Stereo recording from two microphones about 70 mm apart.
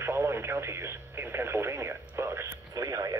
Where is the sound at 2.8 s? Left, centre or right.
Right.